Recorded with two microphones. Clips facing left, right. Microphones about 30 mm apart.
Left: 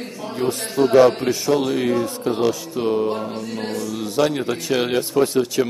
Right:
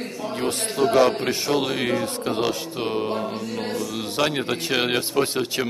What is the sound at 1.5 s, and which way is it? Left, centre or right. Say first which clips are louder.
Speech: left 4 dB; right.